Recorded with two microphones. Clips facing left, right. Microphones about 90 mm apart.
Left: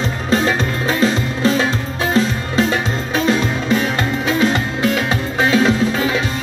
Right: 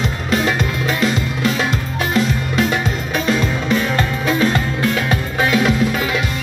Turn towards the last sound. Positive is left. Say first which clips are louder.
# left 1 dB
turn(degrees=25)  # may be behind; listen again after turning